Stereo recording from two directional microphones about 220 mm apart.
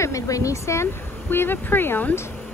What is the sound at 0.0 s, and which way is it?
A woman's voice, 15° left (ahead or behind).